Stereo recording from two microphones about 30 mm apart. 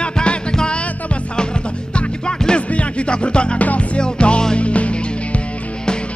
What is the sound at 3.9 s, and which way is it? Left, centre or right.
Music, left.